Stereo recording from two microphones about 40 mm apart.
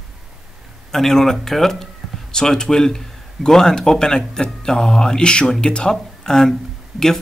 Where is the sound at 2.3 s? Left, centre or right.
Centre.